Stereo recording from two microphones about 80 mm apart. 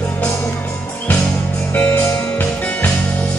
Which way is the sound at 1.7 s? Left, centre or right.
Left.